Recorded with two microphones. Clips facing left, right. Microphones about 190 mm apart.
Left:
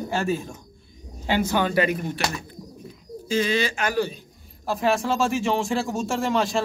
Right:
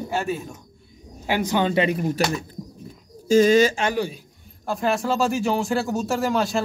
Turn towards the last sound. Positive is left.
turn(degrees=0)  # may be behind; listen again after turning